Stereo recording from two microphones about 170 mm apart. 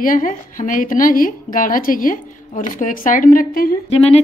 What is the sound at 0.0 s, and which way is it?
A woman's voice, 50° left (ahead or behind).